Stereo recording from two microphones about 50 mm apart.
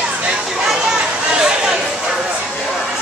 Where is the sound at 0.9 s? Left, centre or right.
Centre.